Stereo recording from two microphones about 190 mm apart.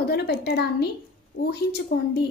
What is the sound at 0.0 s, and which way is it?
A woman's voice, 55° left (ahead or behind).